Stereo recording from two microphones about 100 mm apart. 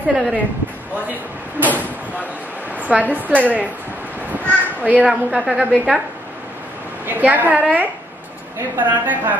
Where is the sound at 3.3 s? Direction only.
15° right (ahead or behind).